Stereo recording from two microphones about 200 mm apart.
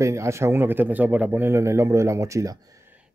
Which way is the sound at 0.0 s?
15° right (ahead or behind).